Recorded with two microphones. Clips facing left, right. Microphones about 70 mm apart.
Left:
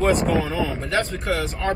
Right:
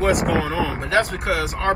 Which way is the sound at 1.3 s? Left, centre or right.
Right.